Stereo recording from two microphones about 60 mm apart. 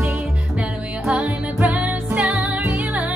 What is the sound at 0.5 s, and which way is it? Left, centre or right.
Music, centre.